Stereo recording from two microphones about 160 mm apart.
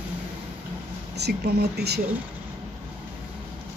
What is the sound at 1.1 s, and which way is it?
Speech, 90° right.